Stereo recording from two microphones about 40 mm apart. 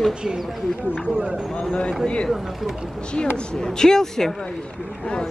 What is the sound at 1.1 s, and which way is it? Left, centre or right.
Speech, centre.